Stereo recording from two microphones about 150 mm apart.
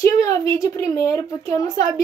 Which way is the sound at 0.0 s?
20° left (ahead or behind).